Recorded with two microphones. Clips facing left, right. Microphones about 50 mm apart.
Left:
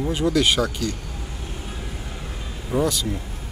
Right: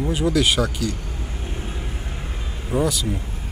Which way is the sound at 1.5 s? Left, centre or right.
Right.